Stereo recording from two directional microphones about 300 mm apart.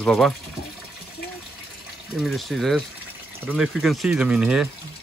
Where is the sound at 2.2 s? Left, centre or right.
Centre.